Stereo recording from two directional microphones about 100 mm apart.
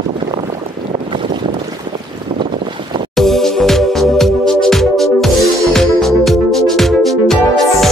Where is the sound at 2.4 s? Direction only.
50° right (ahead or behind).